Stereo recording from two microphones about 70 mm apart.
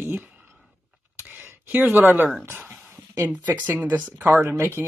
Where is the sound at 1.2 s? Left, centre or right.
Right.